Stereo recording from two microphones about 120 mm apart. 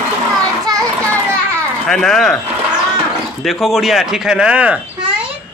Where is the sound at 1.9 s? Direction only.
5° left (ahead or behind).